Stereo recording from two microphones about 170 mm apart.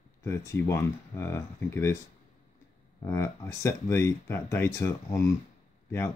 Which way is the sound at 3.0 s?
15° left (ahead or behind).